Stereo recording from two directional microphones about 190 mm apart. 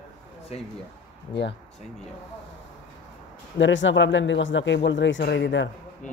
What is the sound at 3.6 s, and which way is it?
Speech, 75° left (ahead or behind).